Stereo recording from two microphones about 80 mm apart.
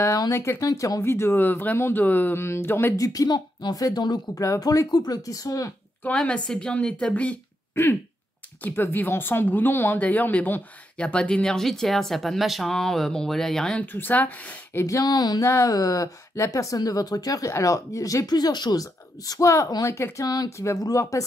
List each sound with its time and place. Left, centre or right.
0.3 s speech: left
1.0 s speech: left
3.0 s speech: left
4.4 s speech: left
6.1 s speech: centre
8.6 s speech: left; by 13.7 s centre
13.7 s speech: left
14.8 s speech: left
15.4 s speech: left
15.7 s speech: left